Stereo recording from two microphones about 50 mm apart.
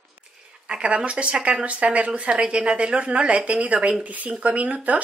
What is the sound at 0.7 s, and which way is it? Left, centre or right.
Speech, centre.